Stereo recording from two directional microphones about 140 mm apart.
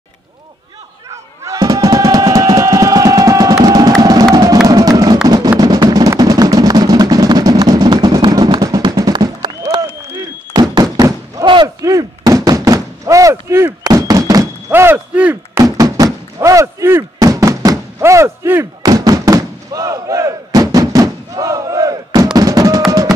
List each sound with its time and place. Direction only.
1.4 s music: 25° right (ahead or behind)
11.8 s knock: 25° right (ahead or behind)
14.7 s a sound: 15° right (ahead or behind)
15.5 s knock: 25° right (ahead or behind)